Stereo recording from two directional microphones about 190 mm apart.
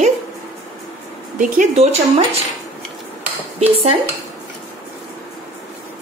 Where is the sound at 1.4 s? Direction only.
40° right (ahead or behind).